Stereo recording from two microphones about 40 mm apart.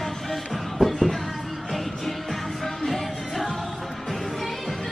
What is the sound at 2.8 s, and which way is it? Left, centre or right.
Music, centre.